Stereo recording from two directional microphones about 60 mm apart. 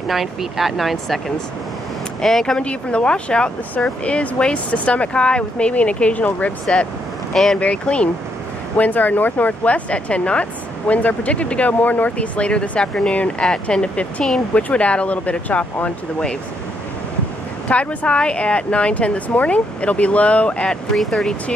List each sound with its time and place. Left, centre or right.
0.1 s speech: centre
2.2 s speech: centre; by 15.9 s left
17.6 s speech: centre
20.9 s speech: centre